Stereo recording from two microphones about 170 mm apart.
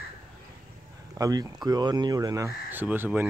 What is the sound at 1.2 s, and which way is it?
Speech, 20° right (ahead or behind).